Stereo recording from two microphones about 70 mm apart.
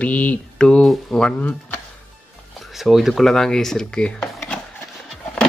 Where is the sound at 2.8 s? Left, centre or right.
Centre.